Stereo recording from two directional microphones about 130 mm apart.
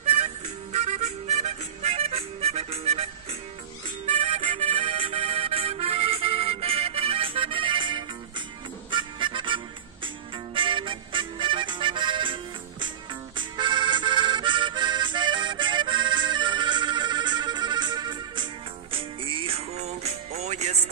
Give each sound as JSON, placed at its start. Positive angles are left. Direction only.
{"t": 0.0, "sound": "music", "side_deg": -60}
{"t": 13.4, "sound": "music", "side_deg": -35}